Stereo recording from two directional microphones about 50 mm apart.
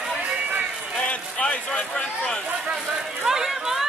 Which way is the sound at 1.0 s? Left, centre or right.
Left.